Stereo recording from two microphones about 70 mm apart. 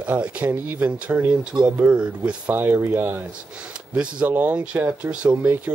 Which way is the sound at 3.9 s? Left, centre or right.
Centre.